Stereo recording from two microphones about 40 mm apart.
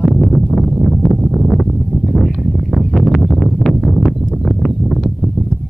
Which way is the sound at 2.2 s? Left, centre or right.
Centre.